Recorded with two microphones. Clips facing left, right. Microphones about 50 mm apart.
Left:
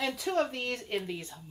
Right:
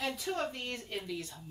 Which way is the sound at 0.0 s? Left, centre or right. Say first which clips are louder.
Left 5 dB; left.